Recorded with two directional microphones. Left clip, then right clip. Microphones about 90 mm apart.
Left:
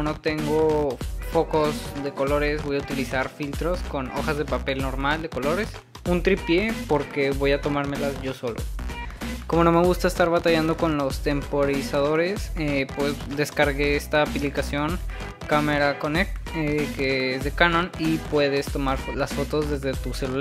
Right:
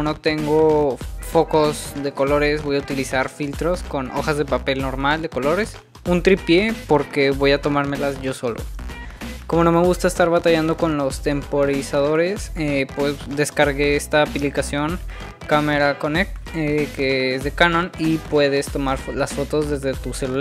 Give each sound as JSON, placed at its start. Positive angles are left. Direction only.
{"t": 0.0, "sound": "speech", "side_deg": -35}
{"t": 9.6, "sound": "speech", "side_deg": -15}